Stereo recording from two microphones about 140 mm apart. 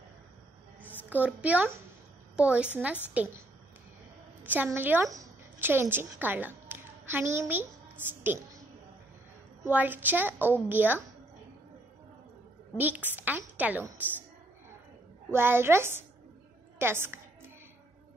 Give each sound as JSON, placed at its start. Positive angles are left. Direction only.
{"t": 1.1, "sound": "a woman's voice", "side_deg": -10}
{"t": 4.6, "sound": "a woman's voice", "side_deg": -15}
{"t": 9.7, "sound": "a woman's voice", "side_deg": -10}
{"t": 12.7, "sound": "a woman's voice", "side_deg": -10}
{"t": 15.3, "sound": "a woman's voice", "side_deg": -15}